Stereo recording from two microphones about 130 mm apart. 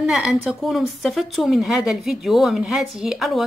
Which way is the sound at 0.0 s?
Centre (ahead or behind).